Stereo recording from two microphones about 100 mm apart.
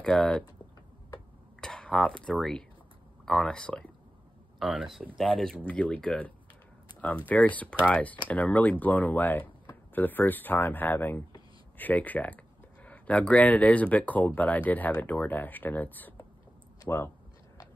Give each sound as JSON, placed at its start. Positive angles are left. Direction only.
{"t": 0.0, "sound": "speech", "side_deg": 10}
{"t": 1.6, "sound": "speech", "side_deg": 10}
{"t": 4.6, "sound": "speech", "side_deg": -5}